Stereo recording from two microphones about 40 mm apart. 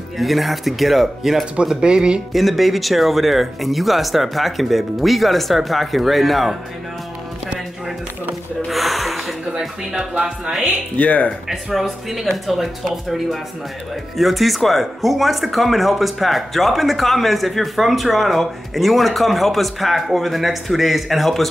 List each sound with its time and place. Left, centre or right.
0.2 s speech: centre
1.2 s speech: centre
1.8 s speech: right
2.3 s speech: centre
8.6 s gasp: centre
9.5 s speech: centre
11.0 s speech: left
11.4 s speech: centre